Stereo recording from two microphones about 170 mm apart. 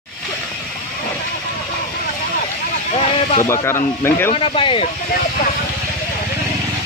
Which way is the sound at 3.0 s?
45° left (ahead or behind).